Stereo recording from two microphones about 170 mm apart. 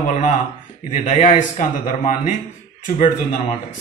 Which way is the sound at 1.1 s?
50° left (ahead or behind).